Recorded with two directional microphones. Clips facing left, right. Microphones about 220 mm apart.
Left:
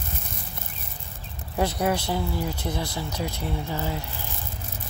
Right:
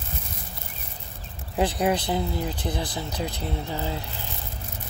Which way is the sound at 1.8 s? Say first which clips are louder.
Right 1 dB; 15° right (ahead or behind).